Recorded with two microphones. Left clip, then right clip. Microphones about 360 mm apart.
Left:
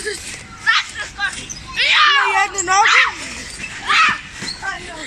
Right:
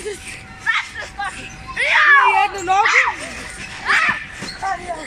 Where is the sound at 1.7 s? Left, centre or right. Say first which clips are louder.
Right 1 dB; centre.